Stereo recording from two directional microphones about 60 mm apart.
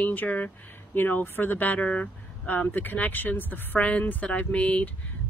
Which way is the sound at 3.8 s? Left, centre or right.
Left.